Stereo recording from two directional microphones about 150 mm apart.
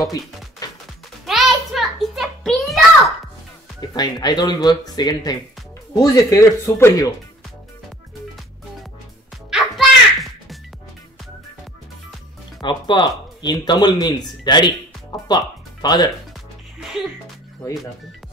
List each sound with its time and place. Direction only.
0.6 s music: 25° left (ahead or behind)
1.2 s music: centre (ahead or behind)
3.9 s speech: 30° left (ahead or behind)
9.5 s music: centre (ahead or behind)
12.6 s speech: 30° left (ahead or behind)